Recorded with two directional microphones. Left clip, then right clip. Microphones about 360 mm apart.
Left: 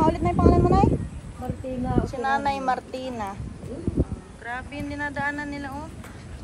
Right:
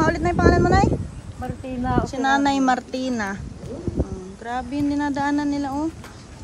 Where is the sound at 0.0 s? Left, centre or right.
Right.